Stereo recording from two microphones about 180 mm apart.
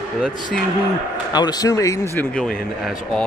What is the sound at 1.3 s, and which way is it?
Speech, 20° left (ahead or behind).